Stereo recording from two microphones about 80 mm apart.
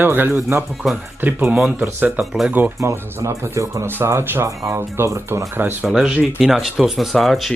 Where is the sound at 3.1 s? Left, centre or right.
Right.